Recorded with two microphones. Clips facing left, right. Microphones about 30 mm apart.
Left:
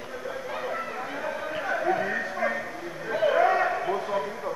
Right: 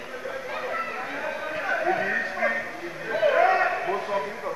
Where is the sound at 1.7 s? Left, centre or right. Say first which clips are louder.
Right 2 dB; right.